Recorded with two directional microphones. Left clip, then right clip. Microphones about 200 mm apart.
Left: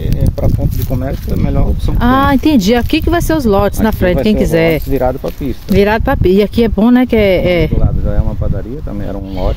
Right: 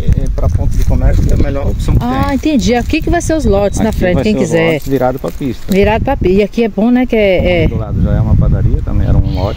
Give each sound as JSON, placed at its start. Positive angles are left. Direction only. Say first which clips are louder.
{"t": 1.5, "sound": "speech", "louder": "right 1 dB", "side_deg": 25}
{"t": 4.9, "sound": "speech", "louder": "right 1 dB", "side_deg": -50}
{"t": 5.8, "sound": "speech", "louder": "even", "side_deg": 5}